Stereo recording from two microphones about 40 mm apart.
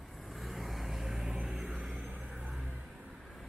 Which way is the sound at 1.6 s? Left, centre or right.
Right.